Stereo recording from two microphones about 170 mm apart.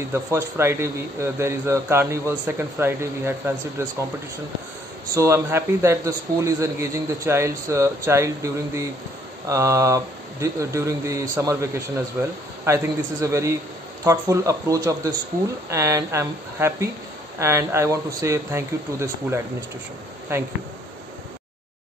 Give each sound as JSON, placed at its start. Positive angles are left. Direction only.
{"t": 0.1, "sound": "speech", "side_deg": -15}
{"t": 5.1, "sound": "speech", "side_deg": -15}